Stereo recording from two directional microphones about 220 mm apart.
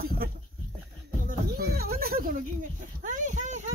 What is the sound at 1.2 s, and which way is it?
Music, 45° right (ahead or behind).